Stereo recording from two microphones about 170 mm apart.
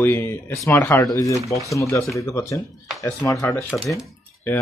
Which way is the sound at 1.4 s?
20° right (ahead or behind).